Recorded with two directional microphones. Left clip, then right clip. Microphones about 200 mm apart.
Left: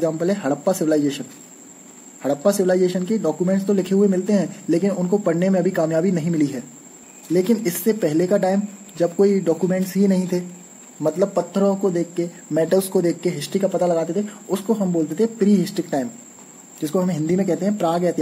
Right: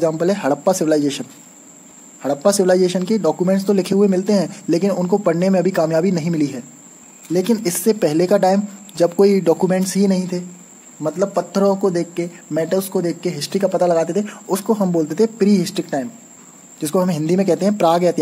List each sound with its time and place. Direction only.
0.0 s speech: 25° right (ahead or behind)
2.2 s speech: 20° right (ahead or behind)
10.3 s speech: centre (ahead or behind)
11.3 s speech: 25° right (ahead or behind)
12.5 s speech: centre (ahead or behind); by 14.1 s 20° right (ahead or behind)
14.2 s speech: 35° right (ahead or behind)
16.8 s speech: 30° right (ahead or behind)